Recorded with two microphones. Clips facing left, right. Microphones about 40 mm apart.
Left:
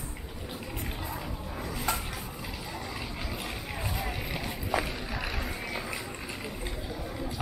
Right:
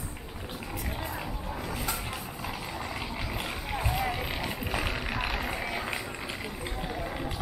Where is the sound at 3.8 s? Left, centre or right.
Right.